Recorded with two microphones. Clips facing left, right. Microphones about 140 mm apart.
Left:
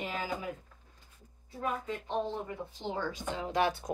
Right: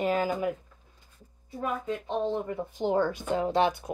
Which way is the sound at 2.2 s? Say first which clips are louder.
Right 7 dB; 50° right (ahead or behind).